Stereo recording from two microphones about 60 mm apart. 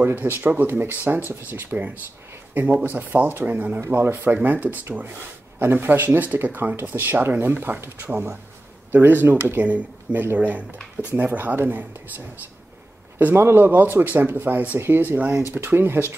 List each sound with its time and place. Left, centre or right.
0.0 s speech: right
3.8 s speech: right
4.4 s speech: right
13.2 s speech: right